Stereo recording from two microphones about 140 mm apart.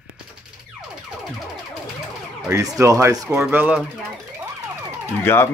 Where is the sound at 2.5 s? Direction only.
25° right (ahead or behind).